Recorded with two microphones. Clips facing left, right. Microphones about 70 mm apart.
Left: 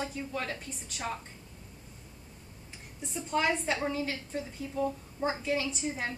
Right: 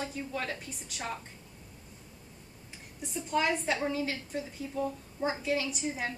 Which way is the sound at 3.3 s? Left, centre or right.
Centre.